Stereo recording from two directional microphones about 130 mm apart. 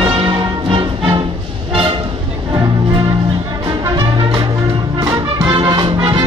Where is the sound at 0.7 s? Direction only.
45° right (ahead or behind).